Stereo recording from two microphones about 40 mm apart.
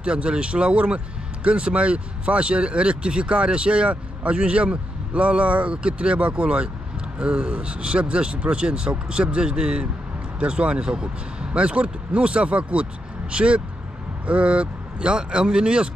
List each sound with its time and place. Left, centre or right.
0.0 s speech: right